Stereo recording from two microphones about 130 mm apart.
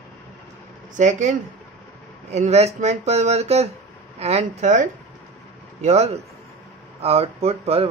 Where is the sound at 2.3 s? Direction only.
55° right (ahead or behind).